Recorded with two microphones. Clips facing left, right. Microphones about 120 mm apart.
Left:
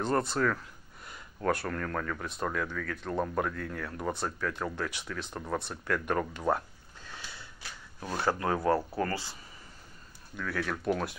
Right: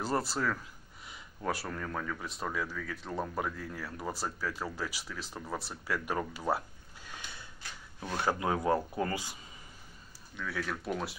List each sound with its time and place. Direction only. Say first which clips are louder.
0.0 s speech: left 4 dB; 5° right (ahead or behind)
3.5 s speech: left 4 dB; 65° left (ahead or behind)
3.8 s speech: left 3 dB; 5° right (ahead or behind)
6.5 s a sound: left 2 dB; 15° right (ahead or behind)
8.2 s speech: left 2 dB; 15° right (ahead or behind)
10.3 s speech: left 3 dB; centre (ahead or behind)